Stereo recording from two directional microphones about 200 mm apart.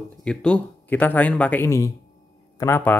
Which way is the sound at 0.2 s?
5° left (ahead or behind).